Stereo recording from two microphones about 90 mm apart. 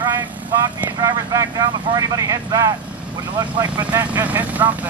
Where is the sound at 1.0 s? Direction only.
40° right (ahead or behind).